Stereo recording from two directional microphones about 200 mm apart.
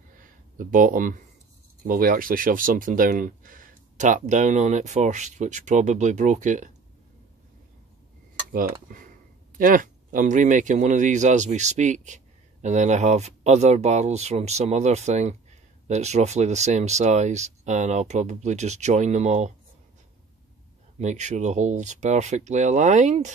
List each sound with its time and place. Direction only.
0.2 s a sound: 40° right (ahead or behind)
1.9 s speech: 45° right (ahead or behind)
8.5 s cutlery: 45° right (ahead or behind)
9.6 s speech: 45° right (ahead or behind)
21.0 s speech: 35° right (ahead or behind)